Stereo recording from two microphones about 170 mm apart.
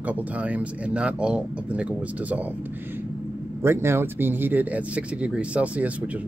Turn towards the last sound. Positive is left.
turn(degrees=-10)  # may be behind; listen again after turning